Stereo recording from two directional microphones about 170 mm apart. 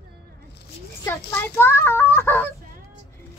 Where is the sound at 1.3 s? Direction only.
10° left (ahead or behind).